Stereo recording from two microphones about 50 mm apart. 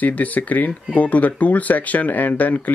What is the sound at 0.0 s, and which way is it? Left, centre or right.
Speech, left.